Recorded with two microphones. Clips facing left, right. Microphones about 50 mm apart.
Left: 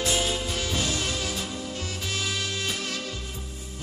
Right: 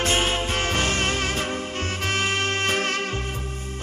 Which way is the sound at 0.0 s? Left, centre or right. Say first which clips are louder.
Right 4 dB; right.